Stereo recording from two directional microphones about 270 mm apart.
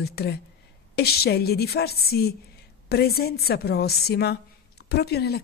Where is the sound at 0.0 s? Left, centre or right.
Left.